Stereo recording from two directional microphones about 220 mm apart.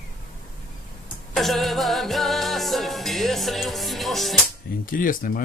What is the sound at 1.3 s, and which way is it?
Music, centre (ahead or behind).